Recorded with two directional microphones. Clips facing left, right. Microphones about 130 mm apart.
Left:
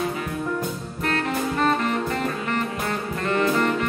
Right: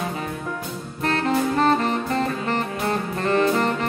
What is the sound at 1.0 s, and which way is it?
Saxophone, 30° right (ahead or behind).